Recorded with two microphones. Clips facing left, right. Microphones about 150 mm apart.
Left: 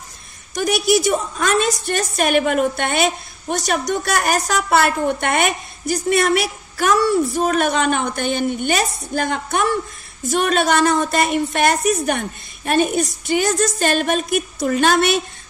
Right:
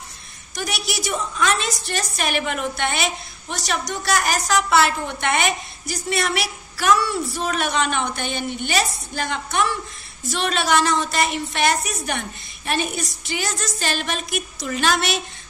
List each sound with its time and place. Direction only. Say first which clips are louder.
0.6 s a woman's voice: left 11 dB; 50° left (ahead or behind)